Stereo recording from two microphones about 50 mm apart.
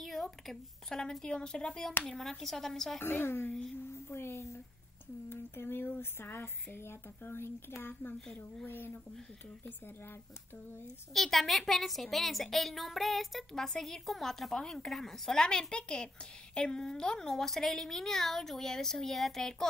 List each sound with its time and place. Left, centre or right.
0.0 s a woman's voice: centre
2.0 s a woman's voice: centre
3.0 s speech: left
3.9 s a sound: left
5.3 s speech: left
11.1 s a woman's voice: centre